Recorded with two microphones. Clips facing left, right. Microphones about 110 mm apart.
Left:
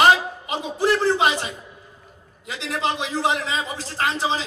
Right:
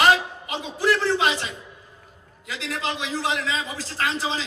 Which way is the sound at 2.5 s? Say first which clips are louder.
Left 4 dB; 25° left (ahead or behind).